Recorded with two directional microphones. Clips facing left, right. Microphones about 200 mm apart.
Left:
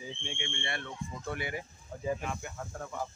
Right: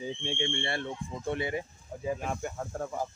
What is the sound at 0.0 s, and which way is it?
Speech, 30° right (ahead or behind).